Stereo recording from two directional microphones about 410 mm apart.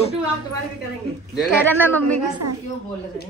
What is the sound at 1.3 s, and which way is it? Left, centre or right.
A child's voice, centre.